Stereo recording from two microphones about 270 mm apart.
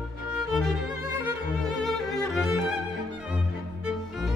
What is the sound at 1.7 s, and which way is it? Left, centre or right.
Music, centre.